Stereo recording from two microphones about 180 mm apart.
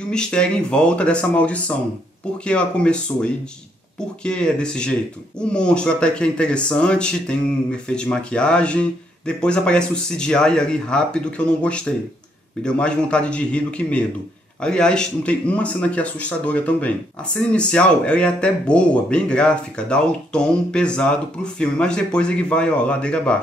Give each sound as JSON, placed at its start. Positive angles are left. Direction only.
{"t": 0.1, "sound": "speech", "side_deg": 5}